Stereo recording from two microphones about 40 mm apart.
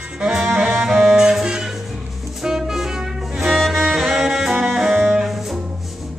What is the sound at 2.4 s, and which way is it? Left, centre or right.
Music, centre.